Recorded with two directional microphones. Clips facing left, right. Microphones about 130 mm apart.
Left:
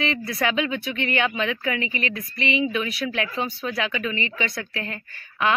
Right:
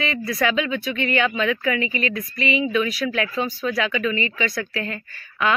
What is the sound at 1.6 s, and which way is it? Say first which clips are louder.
Speech: right 3 dB; 25° left (ahead or behind).